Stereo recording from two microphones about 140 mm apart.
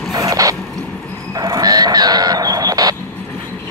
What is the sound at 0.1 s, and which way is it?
Mechanisms, 25° right (ahead or behind).